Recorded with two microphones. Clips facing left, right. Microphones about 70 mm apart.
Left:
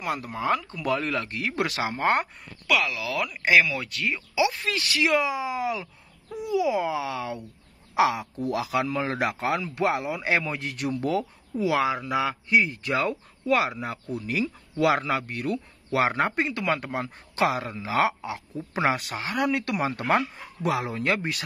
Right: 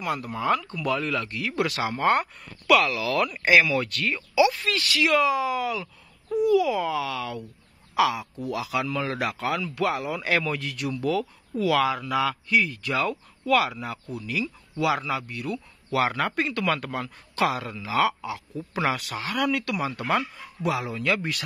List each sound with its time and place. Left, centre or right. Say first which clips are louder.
0.0 s speech: right 1 dB; left
2.6 s speech: right 5 dB; centre
4.4 s speech: right 4 dB; left
7.9 s speech: left 1 dB; left
11.5 s speech: right 1 dB; centre